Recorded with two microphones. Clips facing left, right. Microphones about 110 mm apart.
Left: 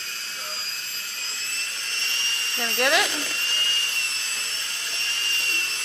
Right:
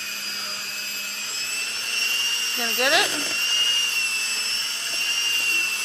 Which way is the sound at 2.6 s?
5° right (ahead or behind).